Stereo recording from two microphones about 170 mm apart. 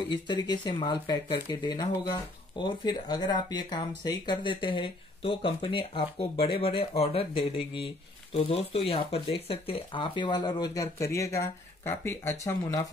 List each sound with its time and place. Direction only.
0.1 s speech: 25° left (ahead or behind)